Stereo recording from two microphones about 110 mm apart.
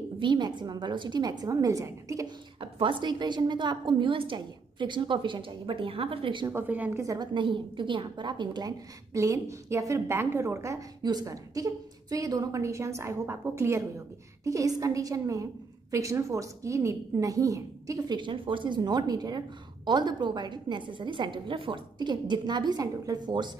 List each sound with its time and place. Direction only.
0.2 s a woman's voice: 45° right (ahead or behind)
2.6 s a woman's voice: 50° right (ahead or behind)
6.5 s a woman's voice: 15° right (ahead or behind)
7.0 s a woman's voice: 30° right (ahead or behind)
7.3 s a woman's voice: 50° right (ahead or behind)
9.1 s a woman's voice: 30° right (ahead or behind)
11.0 s a woman's voice: 40° right (ahead or behind)